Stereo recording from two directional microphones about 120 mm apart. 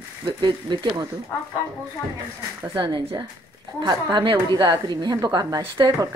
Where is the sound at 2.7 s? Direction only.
45° right (ahead or behind).